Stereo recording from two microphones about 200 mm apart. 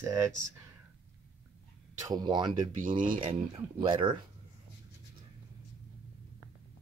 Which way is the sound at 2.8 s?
45° right (ahead or behind).